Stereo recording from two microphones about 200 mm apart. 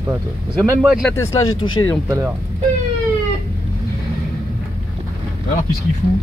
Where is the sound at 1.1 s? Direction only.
20° left (ahead or behind).